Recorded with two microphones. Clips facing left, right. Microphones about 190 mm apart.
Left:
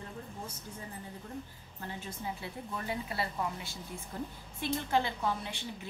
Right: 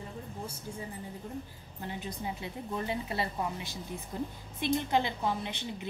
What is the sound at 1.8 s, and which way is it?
A woman's voice, 15° right (ahead or behind).